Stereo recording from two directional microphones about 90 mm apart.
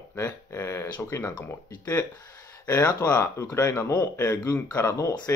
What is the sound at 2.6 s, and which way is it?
Speech, 20° left (ahead or behind).